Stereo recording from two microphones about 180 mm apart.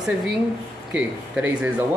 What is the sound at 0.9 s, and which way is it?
Speech, 5° right (ahead or behind).